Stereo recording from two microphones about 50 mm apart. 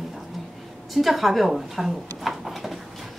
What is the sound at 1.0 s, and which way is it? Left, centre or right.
Speech, centre.